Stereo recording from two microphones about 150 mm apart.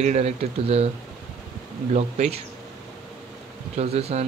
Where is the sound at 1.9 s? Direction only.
50° right (ahead or behind).